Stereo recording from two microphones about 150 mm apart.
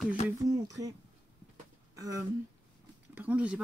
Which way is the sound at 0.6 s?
25° right (ahead or behind).